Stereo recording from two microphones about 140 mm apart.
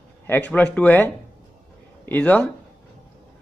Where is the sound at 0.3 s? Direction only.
10° left (ahead or behind).